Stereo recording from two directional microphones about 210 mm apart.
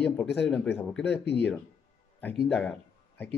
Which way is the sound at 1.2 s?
55° left (ahead or behind).